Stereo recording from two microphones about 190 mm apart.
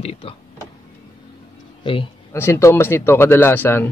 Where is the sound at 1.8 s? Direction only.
25° left (ahead or behind).